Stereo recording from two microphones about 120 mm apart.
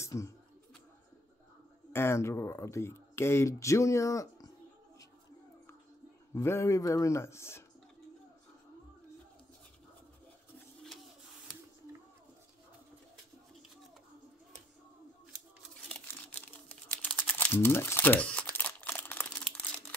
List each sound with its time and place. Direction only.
0.0 s a sound: 25° left (ahead or behind)
1.9 s speech: 20° left (ahead or behind)
6.3 s speech: 20° left (ahead or behind)
16.1 s crumpling: 15° left (ahead or behind)